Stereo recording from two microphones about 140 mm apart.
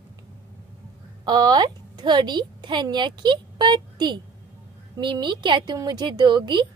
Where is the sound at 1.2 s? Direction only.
30° right (ahead or behind).